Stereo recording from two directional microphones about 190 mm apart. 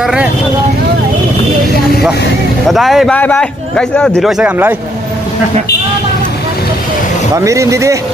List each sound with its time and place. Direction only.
0.0 s vehicle: 5° right (ahead or behind)
2.7 s speech: centre (ahead or behind)
7.3 s speech: 15° right (ahead or behind)